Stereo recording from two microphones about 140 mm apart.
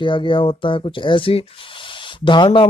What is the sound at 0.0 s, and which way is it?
Speech, 35° left (ahead or behind).